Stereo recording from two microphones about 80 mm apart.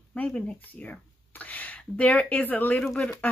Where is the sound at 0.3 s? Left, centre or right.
Centre.